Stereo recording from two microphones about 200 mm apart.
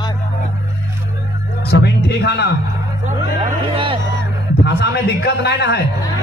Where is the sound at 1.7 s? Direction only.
55° left (ahead or behind).